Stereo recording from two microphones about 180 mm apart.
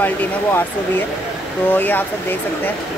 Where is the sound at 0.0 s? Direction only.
10° left (ahead or behind).